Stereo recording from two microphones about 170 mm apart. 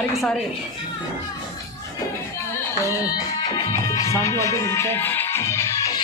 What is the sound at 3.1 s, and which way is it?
Speech, 25° left (ahead or behind).